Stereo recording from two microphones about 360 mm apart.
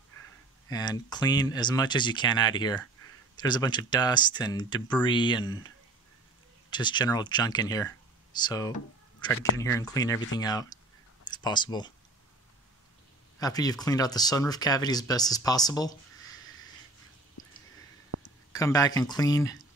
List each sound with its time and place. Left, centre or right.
0.7 s speech: centre
6.7 s speech: centre
13.4 s speech: centre
18.1 s a sound: right
18.5 s speech: centre